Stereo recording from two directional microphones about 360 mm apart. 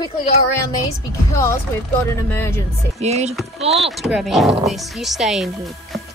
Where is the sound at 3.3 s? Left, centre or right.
Centre.